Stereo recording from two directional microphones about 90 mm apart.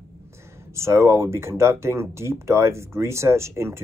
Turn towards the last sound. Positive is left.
turn(degrees=-30)  # may be behind; listen again after turning